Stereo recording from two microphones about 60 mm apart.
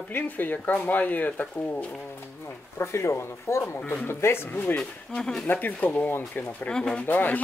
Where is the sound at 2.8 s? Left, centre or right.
Left.